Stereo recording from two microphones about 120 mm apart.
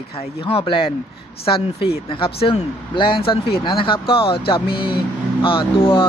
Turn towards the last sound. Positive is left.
turn(degrees=45)  # may be behind; listen again after turning